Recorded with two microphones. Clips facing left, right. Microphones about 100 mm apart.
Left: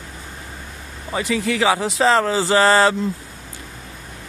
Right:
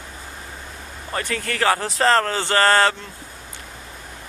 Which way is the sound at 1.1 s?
5° left (ahead or behind).